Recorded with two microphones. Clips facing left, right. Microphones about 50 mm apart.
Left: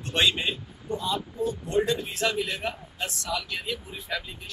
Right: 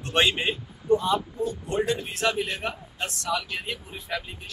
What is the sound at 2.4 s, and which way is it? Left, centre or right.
Speech, centre.